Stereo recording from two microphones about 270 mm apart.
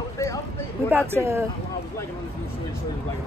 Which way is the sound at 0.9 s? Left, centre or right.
Centre.